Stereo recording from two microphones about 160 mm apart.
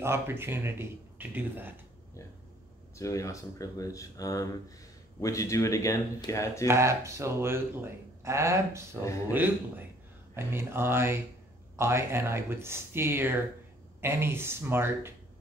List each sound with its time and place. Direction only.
0.0 s speech: 15° right (ahead or behind)
3.0 s speech: 20° left (ahead or behind)
6.7 s speech: 15° right (ahead or behind)
10.3 s speech: 15° right (ahead or behind)